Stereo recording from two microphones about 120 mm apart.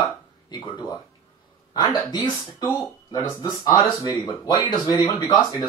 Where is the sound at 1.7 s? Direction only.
35° left (ahead or behind).